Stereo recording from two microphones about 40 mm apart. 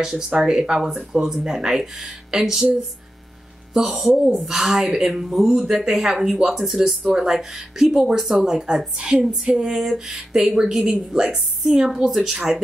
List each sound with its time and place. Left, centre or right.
0.4 s a woman's voice: centre
7.1 s a woman's voice: centre
7.3 s a woman's voice: centre
10.5 s a woman's voice: centre